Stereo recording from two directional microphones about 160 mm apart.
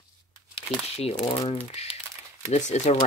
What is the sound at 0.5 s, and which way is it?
Speech, 40° left (ahead or behind).